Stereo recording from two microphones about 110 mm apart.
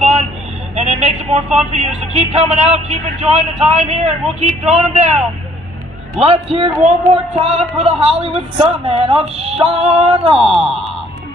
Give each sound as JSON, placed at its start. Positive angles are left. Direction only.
{"t": 0.0, "sound": "vehicle", "side_deg": -90}
{"t": 0.7, "sound": "speech", "side_deg": -85}
{"t": 6.1, "sound": "speech", "side_deg": -70}